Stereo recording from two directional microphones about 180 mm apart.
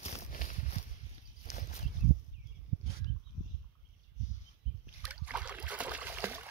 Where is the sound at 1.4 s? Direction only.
40° left (ahead or behind).